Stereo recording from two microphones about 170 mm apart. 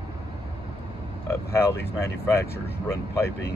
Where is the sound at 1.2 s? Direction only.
15° left (ahead or behind).